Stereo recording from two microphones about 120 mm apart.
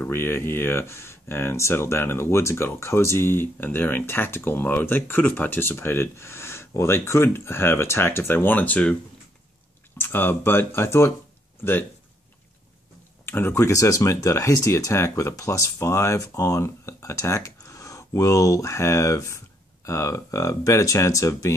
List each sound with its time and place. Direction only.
0.0 s speech: 20° left (ahead or behind)
9.9 s speech: 20° left (ahead or behind)
13.2 s speech: 15° left (ahead or behind)